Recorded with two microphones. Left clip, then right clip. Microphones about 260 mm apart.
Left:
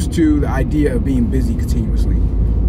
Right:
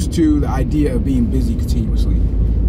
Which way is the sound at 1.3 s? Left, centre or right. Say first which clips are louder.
Left 1 dB; left.